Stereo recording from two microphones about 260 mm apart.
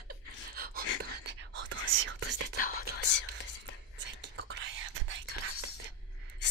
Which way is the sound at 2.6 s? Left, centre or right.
Left.